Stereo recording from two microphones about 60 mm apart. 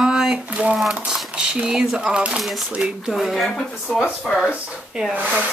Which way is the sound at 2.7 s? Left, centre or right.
Centre.